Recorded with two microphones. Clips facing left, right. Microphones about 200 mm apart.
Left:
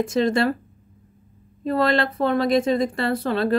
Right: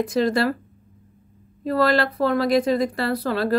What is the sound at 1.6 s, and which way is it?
Speech, 25° left (ahead or behind).